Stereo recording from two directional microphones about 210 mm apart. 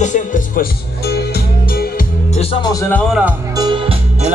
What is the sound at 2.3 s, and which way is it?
Speech, 20° left (ahead or behind).